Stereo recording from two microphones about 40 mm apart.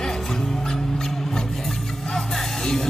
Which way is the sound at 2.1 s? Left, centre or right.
Centre.